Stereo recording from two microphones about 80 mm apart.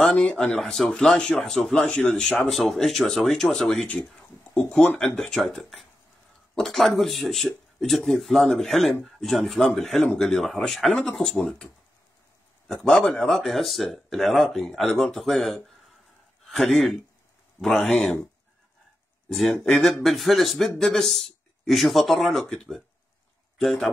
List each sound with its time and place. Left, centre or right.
0.0 s speech: centre
4.9 s speech: centre
12.8 s speech: centre
19.2 s speech: centre